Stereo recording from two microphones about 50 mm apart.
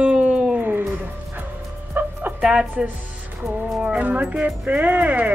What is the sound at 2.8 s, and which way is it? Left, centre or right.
Speech, centre.